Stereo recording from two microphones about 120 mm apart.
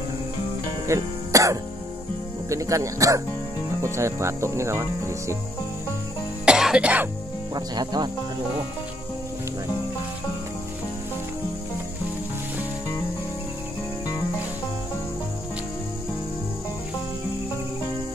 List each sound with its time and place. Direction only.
0.8 s speech: 25° right (ahead or behind)
6.4 s music: 5° right (ahead or behind)
7.5 s speech: 35° right (ahead or behind)